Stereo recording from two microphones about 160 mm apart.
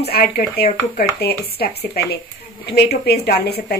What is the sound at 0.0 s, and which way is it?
Speech, 80° left.